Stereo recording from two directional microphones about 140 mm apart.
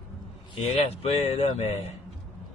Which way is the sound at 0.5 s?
50° left (ahead or behind).